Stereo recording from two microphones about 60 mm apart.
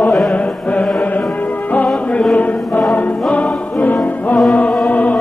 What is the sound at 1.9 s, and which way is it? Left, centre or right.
Music, left.